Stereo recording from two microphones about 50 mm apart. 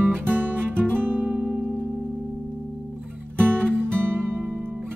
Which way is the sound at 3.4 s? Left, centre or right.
Right.